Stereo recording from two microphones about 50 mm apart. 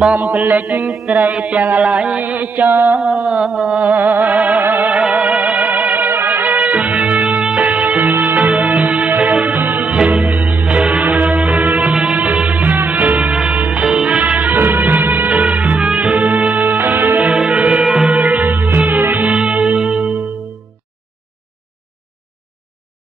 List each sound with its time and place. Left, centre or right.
0.2 s music: centre
0.7 s mantra: right
3.3 s a sound: centre
3.9 s mantra: right
5.1 s music: right
9.8 s music: right
14.6 s music of bollywood: right
16.0 s music: right
17.2 s music: right
18.1 s music: right
19.2 s music: right